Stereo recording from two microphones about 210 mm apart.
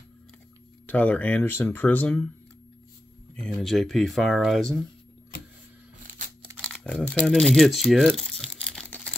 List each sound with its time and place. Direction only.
0.8 s speech: 5° left (ahead or behind)
3.3 s speech: 5° left (ahead or behind)
6.0 s a sound: 35° right (ahead or behind)
6.6 s crumpling: 5° left (ahead or behind)